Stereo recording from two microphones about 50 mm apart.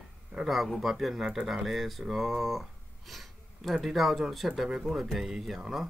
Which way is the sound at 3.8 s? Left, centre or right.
Centre.